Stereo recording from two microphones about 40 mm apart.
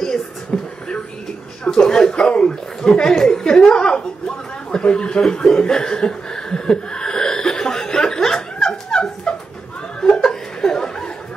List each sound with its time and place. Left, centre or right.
0.0 s a sound: centre
1.6 s chuckle: centre
9.9 s laughter: left